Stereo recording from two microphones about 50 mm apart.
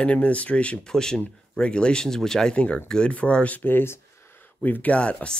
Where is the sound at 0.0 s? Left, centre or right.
Left.